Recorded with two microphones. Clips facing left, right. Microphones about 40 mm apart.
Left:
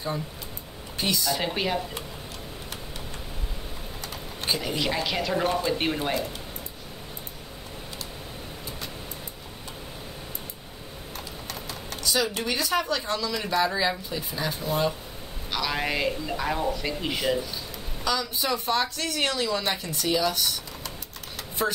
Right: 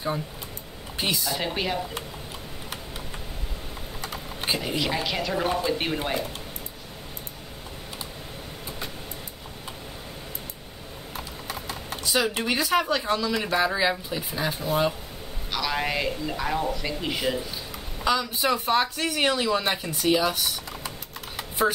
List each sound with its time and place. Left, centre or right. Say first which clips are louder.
0.9 s speech: left 1 dB; centre
4.0 s typing: right 2 dB; centre
4.7 s speech: even; centre
11.1 s clip-clop: right 3 dB; centre
12.0 s speech: right 1 dB; centre
18.0 s speech: right 3 dB; centre
21.4 s typing: right 4 dB; centre